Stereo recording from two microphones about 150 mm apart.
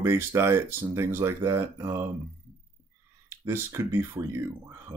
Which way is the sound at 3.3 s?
15° right (ahead or behind).